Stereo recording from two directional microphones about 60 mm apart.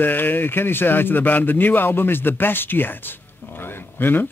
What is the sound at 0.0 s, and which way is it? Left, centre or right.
A man's voice, left.